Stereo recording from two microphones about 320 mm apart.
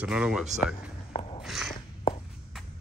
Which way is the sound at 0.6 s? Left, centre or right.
Centre.